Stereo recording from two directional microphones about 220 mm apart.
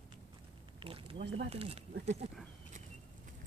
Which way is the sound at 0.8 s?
25° right (ahead or behind).